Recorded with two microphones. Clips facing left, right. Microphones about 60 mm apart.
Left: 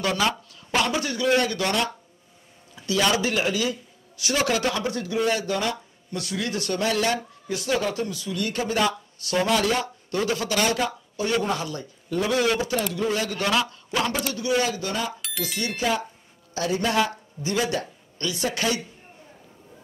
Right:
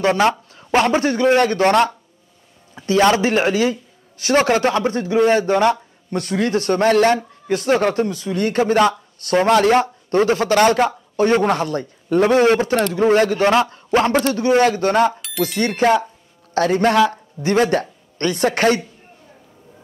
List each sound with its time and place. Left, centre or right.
0.0 s a man's voice: right